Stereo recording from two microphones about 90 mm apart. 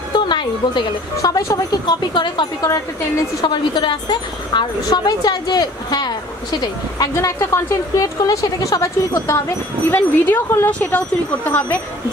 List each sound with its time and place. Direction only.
0.1 s music: 60° left (ahead or behind)
1.1 s speech: 40° left (ahead or behind)
1.9 s speech: 60° left (ahead or behind)
3.4 s speech: 55° left (ahead or behind); by 9.4 s 40° left (ahead or behind)
9.8 s speech: 25° left (ahead or behind)